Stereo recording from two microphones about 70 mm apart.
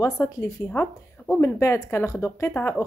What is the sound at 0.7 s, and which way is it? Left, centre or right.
Speech, left.